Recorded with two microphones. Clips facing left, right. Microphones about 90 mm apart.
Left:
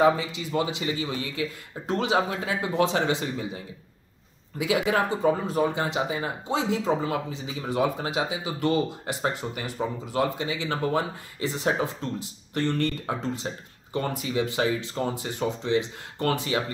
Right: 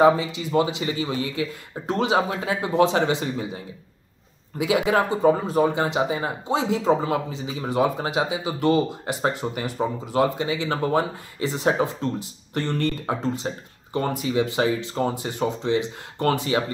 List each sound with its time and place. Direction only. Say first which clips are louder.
0.0 s speech: right 4 dB; 30° right (ahead or behind)
4.6 s speech: right 3 dB; 25° right (ahead or behind)
14.6 s speech: right 3 dB; 30° right (ahead or behind)